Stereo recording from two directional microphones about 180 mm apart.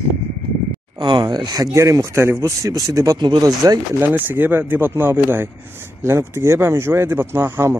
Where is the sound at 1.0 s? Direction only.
25° right (ahead or behind).